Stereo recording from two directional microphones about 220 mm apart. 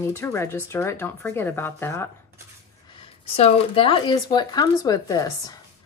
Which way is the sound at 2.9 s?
25° left (ahead or behind).